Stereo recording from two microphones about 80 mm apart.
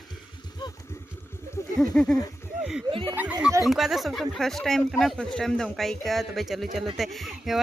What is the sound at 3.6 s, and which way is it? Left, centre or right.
Speech, centre.